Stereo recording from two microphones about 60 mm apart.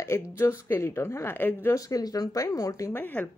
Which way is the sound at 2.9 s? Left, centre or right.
Left.